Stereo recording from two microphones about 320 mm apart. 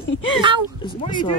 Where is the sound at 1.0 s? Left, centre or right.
Centre.